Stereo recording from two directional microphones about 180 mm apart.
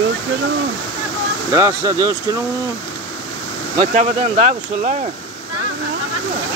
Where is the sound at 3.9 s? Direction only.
40° right (ahead or behind).